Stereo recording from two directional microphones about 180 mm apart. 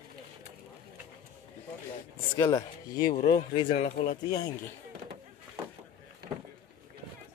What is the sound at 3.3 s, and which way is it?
Speech, 30° left (ahead or behind).